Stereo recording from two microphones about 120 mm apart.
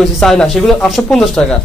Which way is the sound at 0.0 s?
Centre (ahead or behind).